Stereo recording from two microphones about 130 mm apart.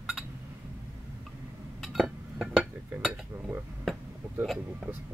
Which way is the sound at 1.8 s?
Centre (ahead or behind).